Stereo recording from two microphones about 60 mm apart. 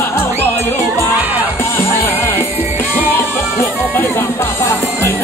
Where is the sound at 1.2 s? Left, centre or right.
Right.